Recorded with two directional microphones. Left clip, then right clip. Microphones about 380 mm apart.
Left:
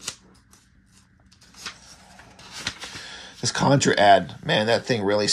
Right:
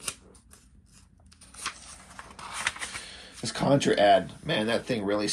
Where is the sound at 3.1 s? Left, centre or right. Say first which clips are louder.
Left 8 dB; centre.